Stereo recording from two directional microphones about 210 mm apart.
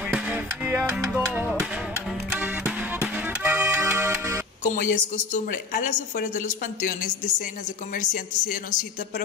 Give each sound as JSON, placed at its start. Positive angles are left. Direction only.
{"t": 0.1, "sound": "music", "side_deg": -10}
{"t": 4.6, "sound": "a woman's voice", "side_deg": 35}